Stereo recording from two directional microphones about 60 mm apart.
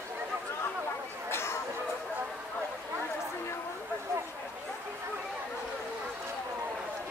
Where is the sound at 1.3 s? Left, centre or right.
Left.